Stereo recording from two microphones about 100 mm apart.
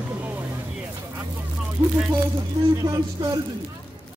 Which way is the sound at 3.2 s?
45° right (ahead or behind).